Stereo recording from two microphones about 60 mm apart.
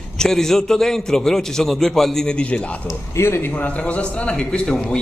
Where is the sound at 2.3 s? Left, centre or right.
Centre.